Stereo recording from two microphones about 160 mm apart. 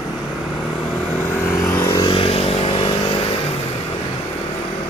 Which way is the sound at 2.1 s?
35° left (ahead or behind).